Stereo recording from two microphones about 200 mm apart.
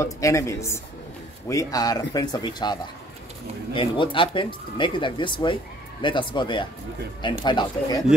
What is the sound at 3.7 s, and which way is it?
Speech, 25° left (ahead or behind).